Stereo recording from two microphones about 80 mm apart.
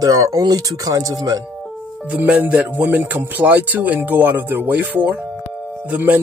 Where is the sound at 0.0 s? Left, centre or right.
Right.